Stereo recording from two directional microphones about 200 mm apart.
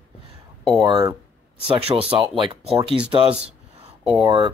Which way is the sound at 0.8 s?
20° right (ahead or behind).